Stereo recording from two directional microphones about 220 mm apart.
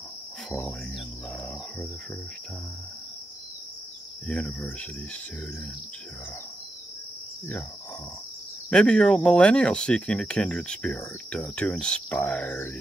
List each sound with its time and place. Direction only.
0.5 s speech: 5° left (ahead or behind)
4.3 s speech: 5° left (ahead or behind)
8.6 s speech: 5° left (ahead or behind)